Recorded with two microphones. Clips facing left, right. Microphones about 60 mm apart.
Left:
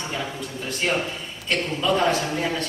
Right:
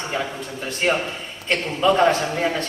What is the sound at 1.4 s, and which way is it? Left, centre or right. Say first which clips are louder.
Speech: right 4 dB; right.